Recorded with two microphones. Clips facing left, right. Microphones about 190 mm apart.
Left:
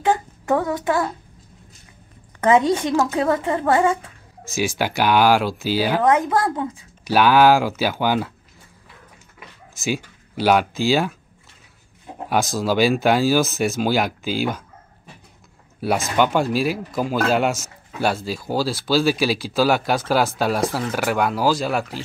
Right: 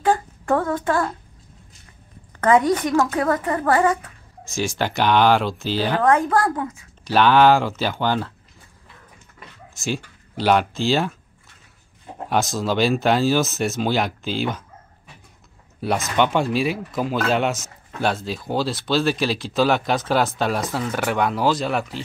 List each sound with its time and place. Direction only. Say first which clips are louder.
0.0 s a sound: even; 20° left (ahead or behind)
2.4 s a woman's voice: even; 25° left (ahead or behind)
4.6 s speech: left 1 dB; 5° left (ahead or behind)
6.0 s a woman's voice: right 2 dB; 20° left (ahead or behind)
7.1 s speech: even; 5° left (ahead or behind)
9.4 s speech: left 2 dB; 5° left (ahead or behind)
12.3 s speech: left 1 dB; centre (ahead or behind)
15.8 s speech: left 1 dB; 5° left (ahead or behind)